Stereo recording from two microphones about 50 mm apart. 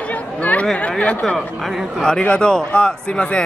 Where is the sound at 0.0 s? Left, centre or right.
Left.